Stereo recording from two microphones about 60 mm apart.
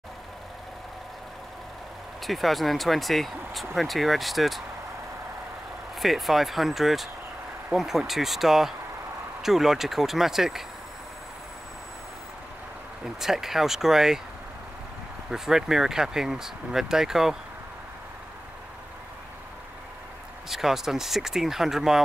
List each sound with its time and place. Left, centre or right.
2.2 s speech: centre
5.9 s speech: centre
13.0 s speech: centre
15.3 s speech: centre
20.4 s speech: centre